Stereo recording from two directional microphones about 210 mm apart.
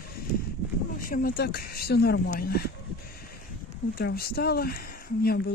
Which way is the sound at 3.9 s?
45° left (ahead or behind).